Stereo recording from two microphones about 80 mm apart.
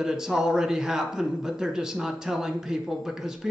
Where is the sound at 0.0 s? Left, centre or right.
Centre.